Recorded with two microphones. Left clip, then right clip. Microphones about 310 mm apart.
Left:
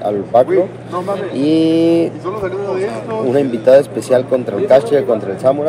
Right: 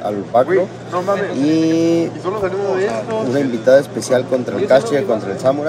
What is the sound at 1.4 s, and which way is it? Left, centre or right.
Speech, centre.